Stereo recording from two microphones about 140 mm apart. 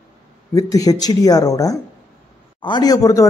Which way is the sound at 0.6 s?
25° left (ahead or behind).